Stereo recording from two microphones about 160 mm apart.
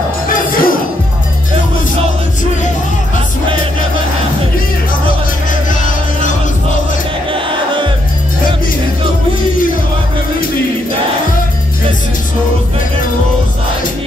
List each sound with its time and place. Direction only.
0.3 s music: 60° left (ahead or behind)
7.3 s music: 30° right (ahead or behind)